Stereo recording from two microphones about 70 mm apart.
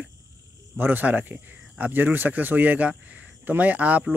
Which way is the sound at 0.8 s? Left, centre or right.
Right.